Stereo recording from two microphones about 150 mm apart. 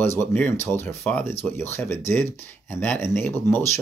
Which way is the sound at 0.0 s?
15° left (ahead or behind).